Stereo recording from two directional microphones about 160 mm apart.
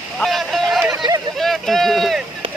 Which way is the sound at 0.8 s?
20° right (ahead or behind).